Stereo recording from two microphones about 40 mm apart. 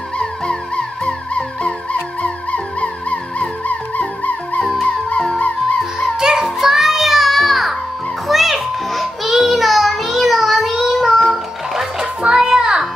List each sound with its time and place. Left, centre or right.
0.2 s music: left
6.1 s music: centre
12.2 s children playing: centre